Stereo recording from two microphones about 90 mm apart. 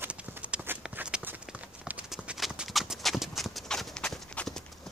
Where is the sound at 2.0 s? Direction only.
5° right (ahead or behind).